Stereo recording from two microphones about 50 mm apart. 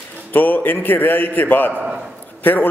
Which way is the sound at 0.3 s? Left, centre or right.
Left.